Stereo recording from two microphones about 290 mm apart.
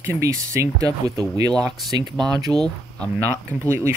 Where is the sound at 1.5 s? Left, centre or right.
Centre.